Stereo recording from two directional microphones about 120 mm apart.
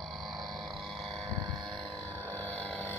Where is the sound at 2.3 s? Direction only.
10° left (ahead or behind).